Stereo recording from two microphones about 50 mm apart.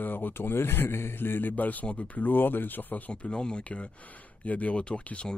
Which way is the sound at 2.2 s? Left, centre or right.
Left.